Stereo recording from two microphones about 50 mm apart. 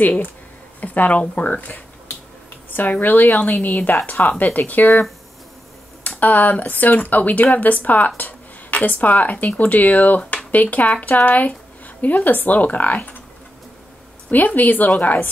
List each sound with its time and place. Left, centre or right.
0.0 s a woman's voice: left
6.0 s a woman's voice: left
14.3 s a woman's voice: left